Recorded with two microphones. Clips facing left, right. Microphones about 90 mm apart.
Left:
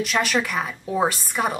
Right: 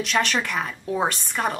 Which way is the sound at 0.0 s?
5° left (ahead or behind).